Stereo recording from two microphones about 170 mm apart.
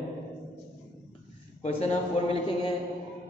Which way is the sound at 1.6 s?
35° left (ahead or behind).